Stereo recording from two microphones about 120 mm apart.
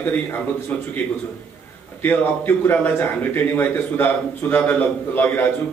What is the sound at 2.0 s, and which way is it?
A man's voice, 15° left (ahead or behind).